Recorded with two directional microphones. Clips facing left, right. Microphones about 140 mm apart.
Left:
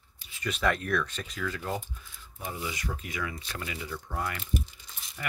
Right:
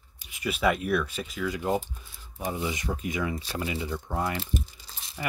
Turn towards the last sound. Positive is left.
turn(degrees=-30)  # may be behind; listen again after turning